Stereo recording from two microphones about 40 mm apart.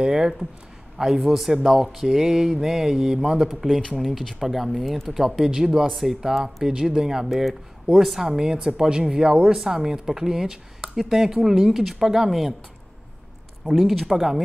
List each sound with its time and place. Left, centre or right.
0.0 s speech: centre
3.9 s speech: centre
5.4 s speech: centre
5.9 s speech: centre
6.4 s speech: centre
13.7 s speech: centre